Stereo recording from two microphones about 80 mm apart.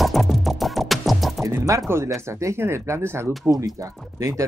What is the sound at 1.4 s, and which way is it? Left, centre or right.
Speech, right.